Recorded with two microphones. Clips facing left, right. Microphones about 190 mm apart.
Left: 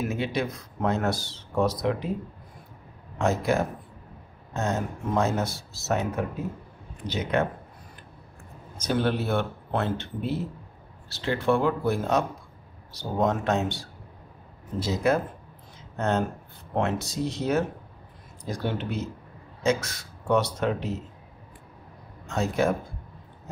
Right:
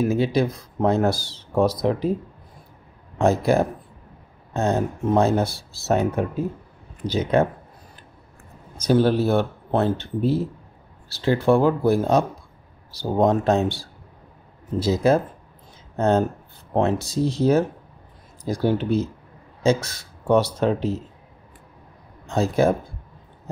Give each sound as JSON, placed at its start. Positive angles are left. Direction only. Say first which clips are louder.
{"t": 0.0, "sound": "speech", "louder": "right 8 dB", "side_deg": -35}
{"t": 3.2, "sound": "speech", "louder": "right 6 dB", "side_deg": -35}
{"t": 8.8, "sound": "speech", "louder": "right 7 dB", "side_deg": -35}
{"t": 22.3, "sound": "speech", "louder": "right 5 dB", "side_deg": -30}